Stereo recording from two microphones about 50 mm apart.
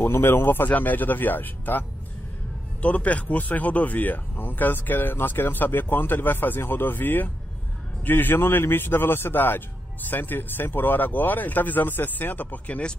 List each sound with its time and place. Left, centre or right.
0.0 s a man's voice: left
0.7 s speech: left
2.8 s a man's voice: left